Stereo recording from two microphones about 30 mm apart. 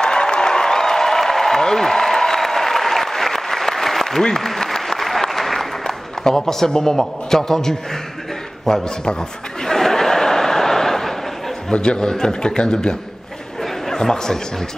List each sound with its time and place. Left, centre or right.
0.0 s applause: left; by 5.7 s centre
5.9 s a sound: centre
6.7 s a man's voice: centre
9.6 s a sound: centre
11.7 s a man's voice: left
13.6 s chatter: centre